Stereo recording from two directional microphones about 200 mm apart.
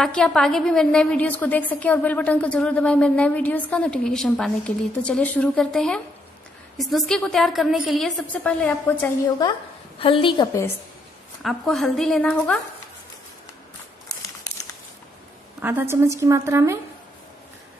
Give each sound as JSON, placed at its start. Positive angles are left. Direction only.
{"t": 0.0, "sound": "a woman's voice", "side_deg": 5}
{"t": 9.5, "sound": "a woman's voice", "side_deg": 25}
{"t": 11.4, "sound": "a woman's voice", "side_deg": 0}
{"t": 15.6, "sound": "a woman's voice", "side_deg": -10}